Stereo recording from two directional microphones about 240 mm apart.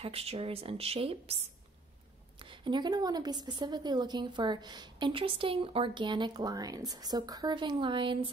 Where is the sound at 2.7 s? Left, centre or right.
Centre.